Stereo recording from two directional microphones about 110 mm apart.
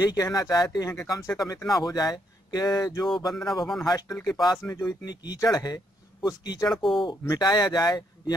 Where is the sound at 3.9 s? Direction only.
35° left (ahead or behind).